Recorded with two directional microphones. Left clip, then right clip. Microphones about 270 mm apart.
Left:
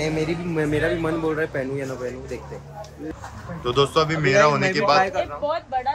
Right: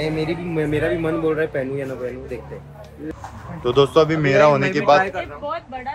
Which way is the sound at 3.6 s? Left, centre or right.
Centre.